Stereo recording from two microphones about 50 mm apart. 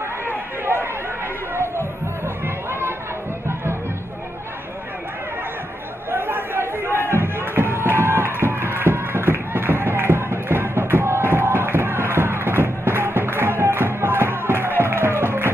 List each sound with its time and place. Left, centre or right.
2.2 s music: right
6.1 s chatter: right
7.1 s music: right